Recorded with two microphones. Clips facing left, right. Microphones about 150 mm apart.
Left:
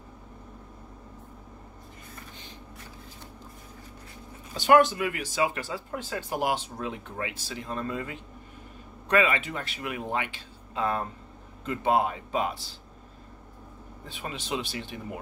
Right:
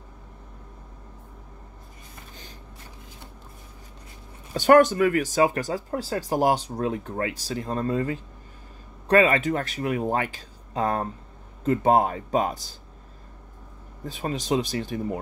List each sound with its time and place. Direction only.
4.6 s a man's voice: 45° right (ahead or behind)
14.0 s speech: 40° right (ahead or behind)